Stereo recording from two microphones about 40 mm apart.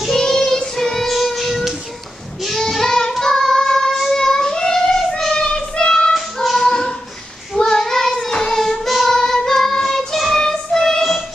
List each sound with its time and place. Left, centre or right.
0.2 s child singing: centre
1.1 s music: centre
2.7 s child singing: centre
6.1 s child singing: centre
6.7 s a sound: centre
7.5 s child singing: centre
9.2 s singing: centre
10.4 s music: centre